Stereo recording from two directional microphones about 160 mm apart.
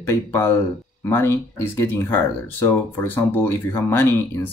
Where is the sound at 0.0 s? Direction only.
15° left (ahead or behind).